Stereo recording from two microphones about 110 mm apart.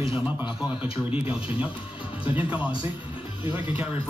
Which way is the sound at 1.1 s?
10° right (ahead or behind).